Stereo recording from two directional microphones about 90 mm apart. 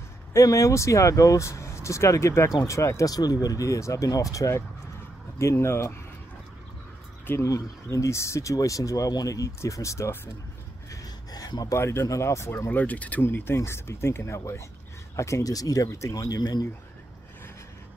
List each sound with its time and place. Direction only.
0.3 s speech: 35° left (ahead or behind)
7.2 s speech: 35° left (ahead or behind)
10.9 s speech: 45° left (ahead or behind)